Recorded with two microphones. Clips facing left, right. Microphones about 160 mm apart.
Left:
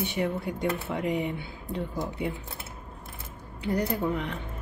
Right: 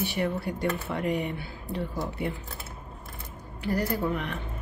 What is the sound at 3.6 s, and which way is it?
Speech, 20° left (ahead or behind).